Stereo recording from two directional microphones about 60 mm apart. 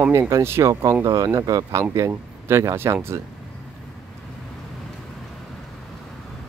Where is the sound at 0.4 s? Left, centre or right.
Right.